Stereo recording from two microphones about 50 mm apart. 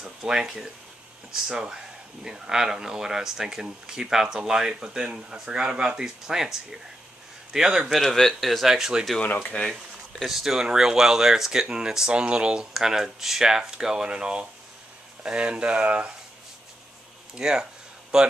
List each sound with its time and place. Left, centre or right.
0.0 s speech: centre
8.1 s speech: centre
8.6 s speech: centre
9.5 s speech: left
10.2 s speech: centre; by 16.1 s right
17.4 s speech: centre